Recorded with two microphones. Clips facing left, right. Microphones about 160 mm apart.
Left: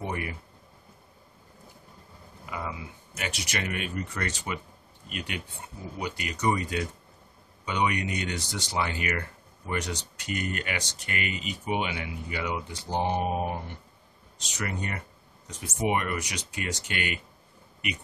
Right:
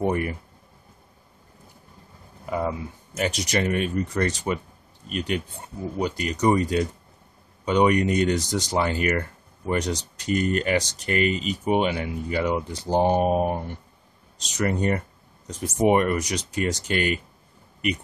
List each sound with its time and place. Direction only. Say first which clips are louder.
0.0 s speech: right 9 dB; 45° right (ahead or behind)
2.4 s speech: right 9 dB; 45° right (ahead or behind)